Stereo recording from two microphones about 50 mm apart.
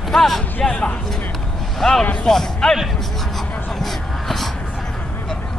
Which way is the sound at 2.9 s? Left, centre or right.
Centre.